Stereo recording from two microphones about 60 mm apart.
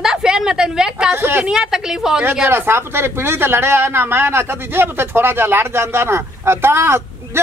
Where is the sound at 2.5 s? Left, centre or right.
Right.